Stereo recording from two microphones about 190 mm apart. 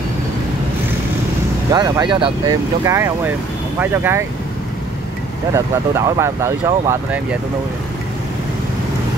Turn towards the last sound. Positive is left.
turn(degrees=-10)  # may be behind; listen again after turning